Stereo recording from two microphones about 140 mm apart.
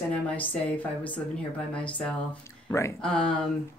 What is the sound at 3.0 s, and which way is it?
Speech, 5° left (ahead or behind).